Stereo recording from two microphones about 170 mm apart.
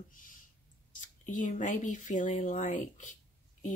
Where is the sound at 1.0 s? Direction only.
50° left (ahead or behind).